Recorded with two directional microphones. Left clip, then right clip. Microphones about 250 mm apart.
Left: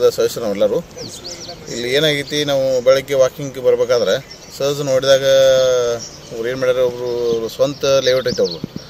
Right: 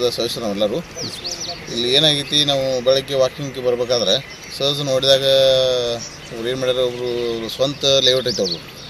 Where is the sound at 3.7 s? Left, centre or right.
Centre.